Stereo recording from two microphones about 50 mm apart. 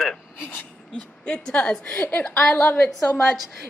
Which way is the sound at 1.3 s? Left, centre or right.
Centre.